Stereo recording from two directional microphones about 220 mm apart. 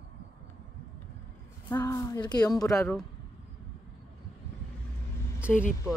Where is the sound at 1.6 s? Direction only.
15° left (ahead or behind).